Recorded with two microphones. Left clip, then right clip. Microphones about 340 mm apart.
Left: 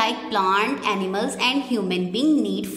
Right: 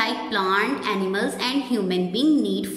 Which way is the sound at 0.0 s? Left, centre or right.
Centre.